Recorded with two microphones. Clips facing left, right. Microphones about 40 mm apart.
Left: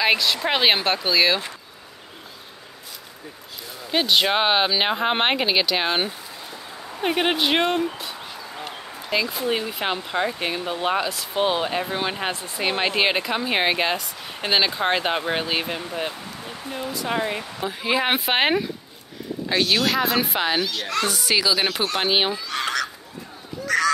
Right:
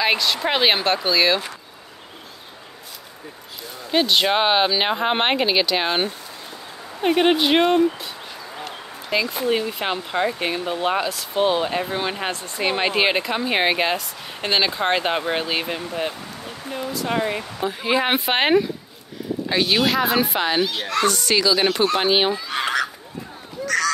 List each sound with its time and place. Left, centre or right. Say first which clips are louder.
0.0 s speech: even; centre
3.9 s speech: right 1 dB; centre
22.3 s goose: right 3 dB; centre
23.6 s a sound: even; centre